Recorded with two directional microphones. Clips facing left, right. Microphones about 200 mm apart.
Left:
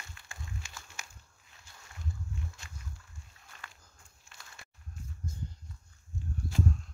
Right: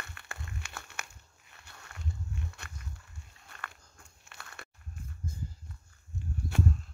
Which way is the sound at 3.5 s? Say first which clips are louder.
Right 6 dB; 60° right (ahead or behind).